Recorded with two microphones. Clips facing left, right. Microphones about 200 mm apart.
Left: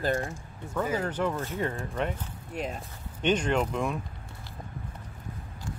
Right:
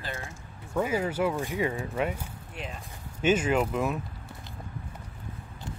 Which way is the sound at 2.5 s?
40° left (ahead or behind).